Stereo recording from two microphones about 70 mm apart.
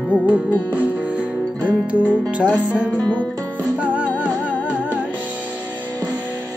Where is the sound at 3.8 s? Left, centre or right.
Centre.